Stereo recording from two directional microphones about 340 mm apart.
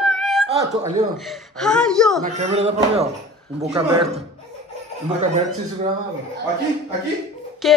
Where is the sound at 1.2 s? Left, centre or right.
Centre.